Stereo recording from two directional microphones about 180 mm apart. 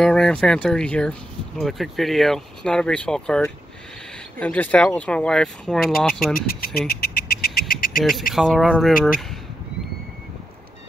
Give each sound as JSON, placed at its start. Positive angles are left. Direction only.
{"t": 0.0, "sound": "speech", "side_deg": 5}
{"t": 6.3, "sound": "speech", "side_deg": 55}
{"t": 7.4, "sound": "a sound", "side_deg": 55}
{"t": 8.3, "sound": "speech", "side_deg": 0}